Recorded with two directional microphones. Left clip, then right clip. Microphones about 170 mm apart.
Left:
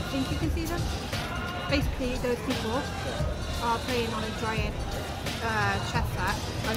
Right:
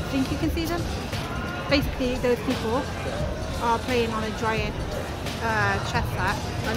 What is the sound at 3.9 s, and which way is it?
Speech, 10° right (ahead or behind).